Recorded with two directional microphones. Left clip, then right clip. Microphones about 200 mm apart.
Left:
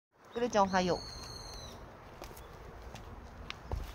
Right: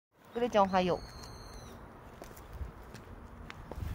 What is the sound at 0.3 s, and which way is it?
Speech, 25° right (ahead or behind).